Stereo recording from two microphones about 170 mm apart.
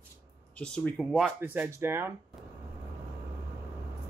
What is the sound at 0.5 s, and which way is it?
Speech, 5° left (ahead or behind).